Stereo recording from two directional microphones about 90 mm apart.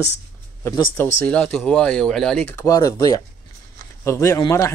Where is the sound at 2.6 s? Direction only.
40° left (ahead or behind).